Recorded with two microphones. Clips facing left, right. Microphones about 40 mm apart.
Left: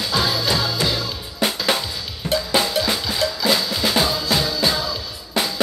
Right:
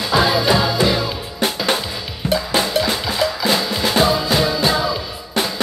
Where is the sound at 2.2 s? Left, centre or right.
Centre.